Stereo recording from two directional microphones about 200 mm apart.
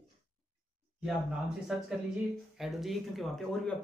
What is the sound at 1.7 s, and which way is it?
Speech, centre (ahead or behind).